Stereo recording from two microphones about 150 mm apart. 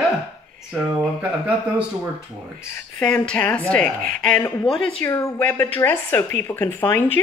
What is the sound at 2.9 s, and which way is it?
A woman's voice, 10° left (ahead or behind).